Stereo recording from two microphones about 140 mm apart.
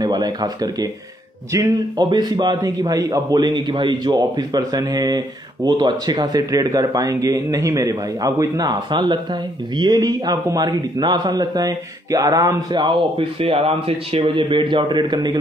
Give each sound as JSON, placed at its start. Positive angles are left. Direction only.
{"t": 0.0, "sound": "a man's voice", "side_deg": -30}